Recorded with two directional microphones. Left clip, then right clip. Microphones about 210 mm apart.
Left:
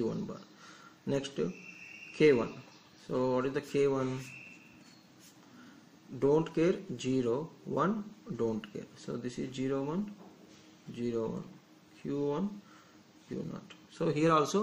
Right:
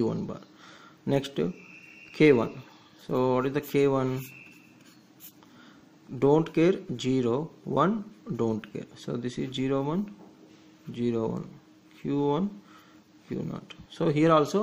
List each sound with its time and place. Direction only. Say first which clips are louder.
0.0 s speech: right 6 dB; 40° right (ahead or behind)
6.1 s speech: right 5 dB; 40° right (ahead or behind)
11.0 s speech: right 6 dB; 40° right (ahead or behind)